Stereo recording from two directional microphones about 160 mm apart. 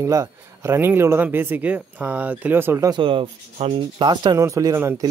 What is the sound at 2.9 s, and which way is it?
Speech, 30° right (ahead or behind).